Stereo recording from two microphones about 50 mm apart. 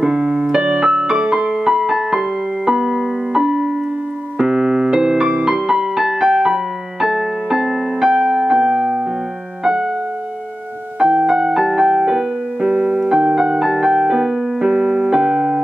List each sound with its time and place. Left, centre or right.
0.0 s piano: centre
11.0 s music: centre
13.1 s music: centre
14.6 s piano: centre